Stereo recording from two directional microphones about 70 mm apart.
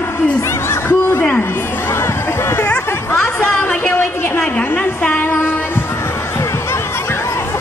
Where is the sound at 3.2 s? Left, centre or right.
Centre.